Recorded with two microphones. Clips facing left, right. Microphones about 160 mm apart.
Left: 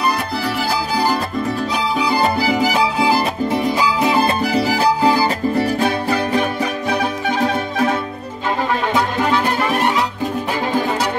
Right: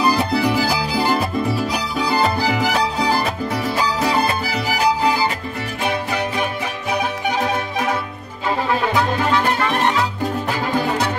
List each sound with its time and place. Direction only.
0.4 s music: 15° right (ahead or behind)
1.1 s music: 5° right (ahead or behind)
2.3 s music: 10° left (ahead or behind)
3.4 s music: 20° left (ahead or behind)
4.7 s music: 35° left (ahead or behind)